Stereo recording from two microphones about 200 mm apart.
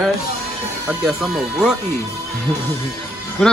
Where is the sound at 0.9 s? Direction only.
Centre (ahead or behind).